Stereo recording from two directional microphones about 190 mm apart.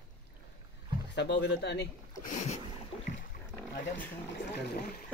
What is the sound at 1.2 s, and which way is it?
Speech, 65° left (ahead or behind).